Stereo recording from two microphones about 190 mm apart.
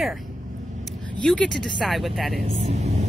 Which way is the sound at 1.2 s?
5° left (ahead or behind).